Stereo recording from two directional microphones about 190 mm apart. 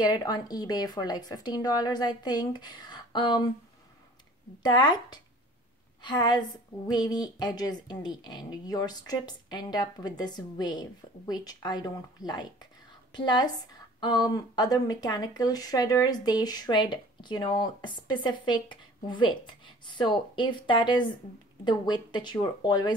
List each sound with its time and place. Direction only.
0.0 s speech: 20° left (ahead or behind)
4.6 s speech: 20° left (ahead or behind)